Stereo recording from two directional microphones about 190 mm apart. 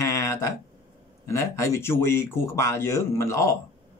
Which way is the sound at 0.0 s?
15° left (ahead or behind).